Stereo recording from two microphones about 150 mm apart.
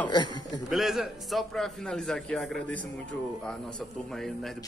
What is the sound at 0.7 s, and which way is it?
Speech, centre (ahead or behind).